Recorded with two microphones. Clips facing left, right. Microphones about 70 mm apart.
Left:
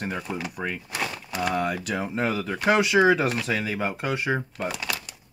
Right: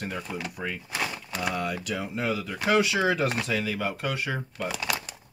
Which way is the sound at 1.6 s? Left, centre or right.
Left.